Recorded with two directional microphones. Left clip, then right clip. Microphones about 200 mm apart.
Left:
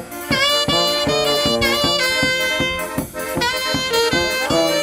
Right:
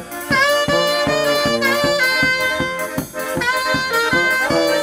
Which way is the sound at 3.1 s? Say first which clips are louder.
Right 2 dB; centre (ahead or behind).